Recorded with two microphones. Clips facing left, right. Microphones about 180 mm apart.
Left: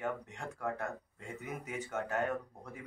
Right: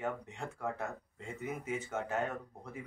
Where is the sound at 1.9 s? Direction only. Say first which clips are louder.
Even; centre (ahead or behind).